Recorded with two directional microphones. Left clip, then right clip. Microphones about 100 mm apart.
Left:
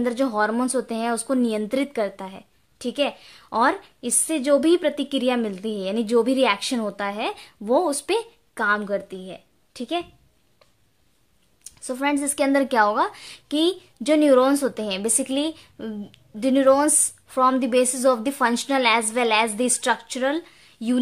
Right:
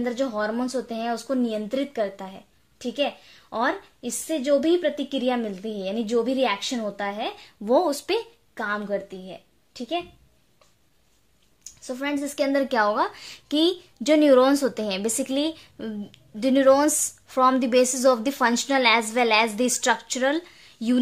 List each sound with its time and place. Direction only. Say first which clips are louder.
0.0 s speech: left 4 dB; 50° left (ahead or behind)
0.9 s speech: left 3 dB; 40° left (ahead or behind)
4.4 s speech: left 2 dB; 50° left (ahead or behind); by 6.0 s 35° left (ahead or behind)
6.0 s speech: left 4 dB; 45° left (ahead or behind)
7.6 s speech: even; 5° left (ahead or behind)
7.9 s speech: left 2 dB; 20° left (ahead or behind)
8.5 s a woman's voice: left 5 dB; 40° left (ahead or behind)
11.6 s speech: left 5 dB; 45° left (ahead or behind); by 21.0 s centre (ahead or behind)